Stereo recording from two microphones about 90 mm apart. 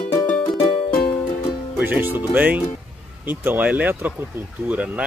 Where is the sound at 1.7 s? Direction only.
20° right (ahead or behind).